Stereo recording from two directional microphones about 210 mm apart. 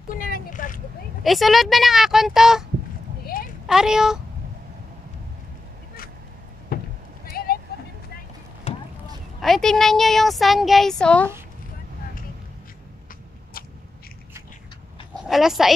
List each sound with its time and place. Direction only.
0.1 s vehicle: 40° left (ahead or behind)
1.2 s speech: centre (ahead or behind)
3.6 s speech: 5° right (ahead or behind)
6.7 s rowboat: 45° left (ahead or behind)
7.2 s vehicle: 45° left (ahead or behind)
8.7 s boat: 25° left (ahead or behind)
9.4 s speech: centre (ahead or behind)
15.2 s speech: centre (ahead or behind)